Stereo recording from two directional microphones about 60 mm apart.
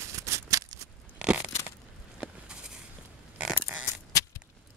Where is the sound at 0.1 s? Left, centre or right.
Right.